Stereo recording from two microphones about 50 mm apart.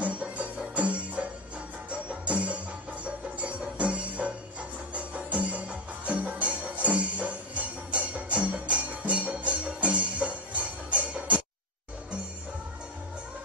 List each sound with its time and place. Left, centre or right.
0.0 s music: right
2.2 s music: right